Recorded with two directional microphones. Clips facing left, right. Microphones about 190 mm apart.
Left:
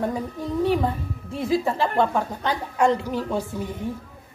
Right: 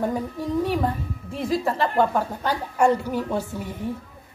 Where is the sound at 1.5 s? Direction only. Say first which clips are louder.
Left 1 dB; centre (ahead or behind).